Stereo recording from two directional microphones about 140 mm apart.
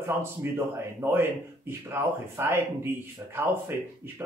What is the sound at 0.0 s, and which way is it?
Speech, 15° right (ahead or behind).